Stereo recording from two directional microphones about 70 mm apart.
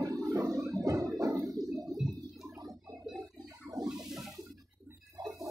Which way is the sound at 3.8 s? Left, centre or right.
Centre.